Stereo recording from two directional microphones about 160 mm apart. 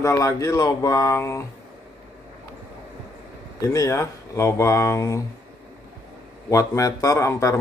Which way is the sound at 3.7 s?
20° left (ahead or behind).